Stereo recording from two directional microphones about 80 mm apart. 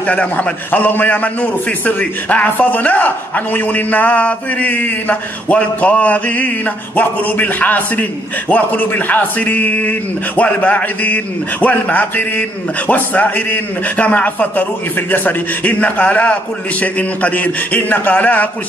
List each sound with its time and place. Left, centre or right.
0.0 s a man's voice: centre